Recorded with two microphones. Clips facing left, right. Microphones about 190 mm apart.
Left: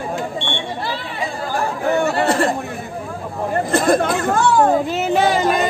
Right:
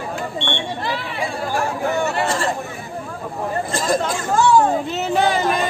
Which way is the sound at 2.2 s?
60° left (ahead or behind).